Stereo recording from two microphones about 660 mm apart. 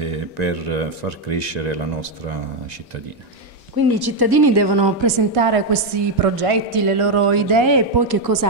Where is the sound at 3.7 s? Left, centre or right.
Right.